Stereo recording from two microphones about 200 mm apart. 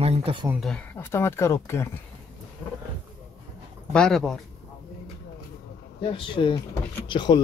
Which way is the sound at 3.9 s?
5° left (ahead or behind).